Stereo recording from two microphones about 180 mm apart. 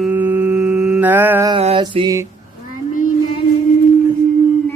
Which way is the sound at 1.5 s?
30° right (ahead or behind).